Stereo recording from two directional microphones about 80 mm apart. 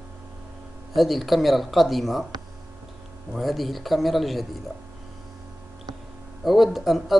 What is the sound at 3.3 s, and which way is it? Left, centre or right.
Speech, centre.